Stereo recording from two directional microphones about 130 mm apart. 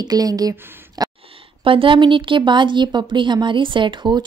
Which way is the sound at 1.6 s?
40° right (ahead or behind).